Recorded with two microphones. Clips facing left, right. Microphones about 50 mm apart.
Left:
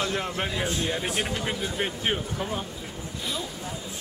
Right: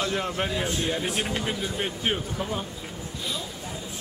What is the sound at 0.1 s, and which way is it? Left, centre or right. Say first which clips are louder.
A man's voice: right 1 dB; centre.